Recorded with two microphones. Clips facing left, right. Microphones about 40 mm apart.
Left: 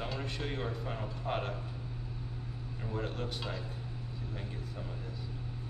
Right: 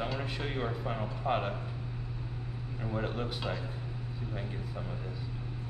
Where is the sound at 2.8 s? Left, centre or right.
Centre.